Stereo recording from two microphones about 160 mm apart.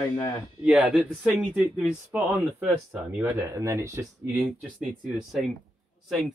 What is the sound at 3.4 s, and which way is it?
Speech, 20° right (ahead or behind).